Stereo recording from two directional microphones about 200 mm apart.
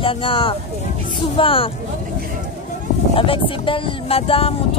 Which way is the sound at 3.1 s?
25° left (ahead or behind).